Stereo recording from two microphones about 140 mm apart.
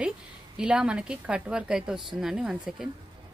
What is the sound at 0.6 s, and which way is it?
A woman's voice, 5° right (ahead or behind).